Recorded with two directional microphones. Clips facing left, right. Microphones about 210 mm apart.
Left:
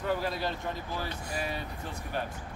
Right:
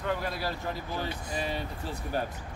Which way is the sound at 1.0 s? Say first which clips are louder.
Right 2 dB; 25° right (ahead or behind).